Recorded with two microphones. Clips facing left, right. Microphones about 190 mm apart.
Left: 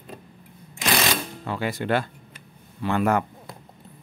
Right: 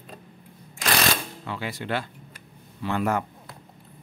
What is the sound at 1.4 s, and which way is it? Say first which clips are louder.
Speech: left 6 dB; 45° left (ahead or behind).